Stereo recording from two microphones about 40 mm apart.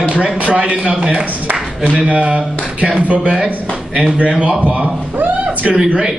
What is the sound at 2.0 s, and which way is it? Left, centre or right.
A man's voice, right.